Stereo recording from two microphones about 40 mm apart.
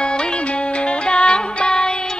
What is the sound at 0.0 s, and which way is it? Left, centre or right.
Music, left.